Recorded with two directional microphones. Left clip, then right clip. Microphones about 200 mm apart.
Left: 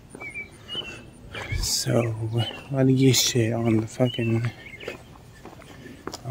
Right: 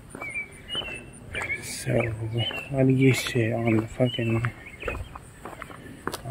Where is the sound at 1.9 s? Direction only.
20° left (ahead or behind).